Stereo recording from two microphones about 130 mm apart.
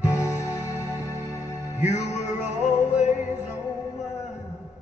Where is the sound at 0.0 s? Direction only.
25° left (ahead or behind).